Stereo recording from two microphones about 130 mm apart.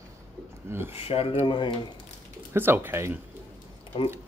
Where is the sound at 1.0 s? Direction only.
45° left (ahead or behind).